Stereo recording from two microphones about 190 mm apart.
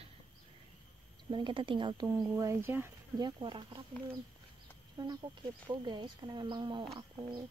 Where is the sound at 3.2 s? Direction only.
25° right (ahead or behind).